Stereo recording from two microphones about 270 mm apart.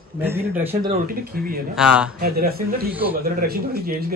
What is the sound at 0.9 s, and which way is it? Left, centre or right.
Speech, right.